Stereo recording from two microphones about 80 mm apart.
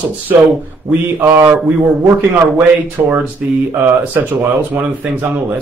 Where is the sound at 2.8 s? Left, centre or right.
Centre.